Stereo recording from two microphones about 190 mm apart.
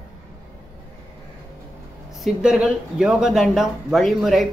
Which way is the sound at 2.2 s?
5° right (ahead or behind).